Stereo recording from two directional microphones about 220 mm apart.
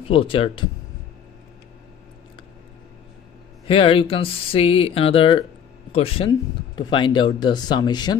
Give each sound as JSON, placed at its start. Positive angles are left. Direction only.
{"t": 0.1, "sound": "speech", "side_deg": 25}
{"t": 3.6, "sound": "speech", "side_deg": 25}